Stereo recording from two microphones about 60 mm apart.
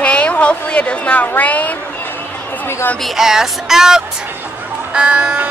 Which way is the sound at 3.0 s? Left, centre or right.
Centre.